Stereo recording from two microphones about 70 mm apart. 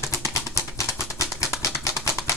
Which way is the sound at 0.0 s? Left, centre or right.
Left.